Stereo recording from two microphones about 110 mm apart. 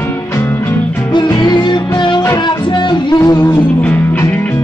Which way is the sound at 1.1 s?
40° left (ahead or behind).